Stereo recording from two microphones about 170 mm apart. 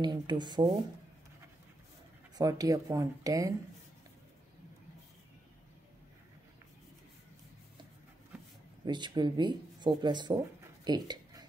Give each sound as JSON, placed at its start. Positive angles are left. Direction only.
{"t": 0.0, "sound": "speech", "side_deg": -25}
{"t": 2.3, "sound": "speech", "side_deg": -20}
{"t": 8.8, "sound": "speech", "side_deg": -25}